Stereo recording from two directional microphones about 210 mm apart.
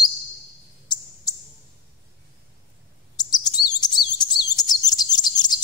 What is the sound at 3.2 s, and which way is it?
Chirp, 20° left (ahead or behind).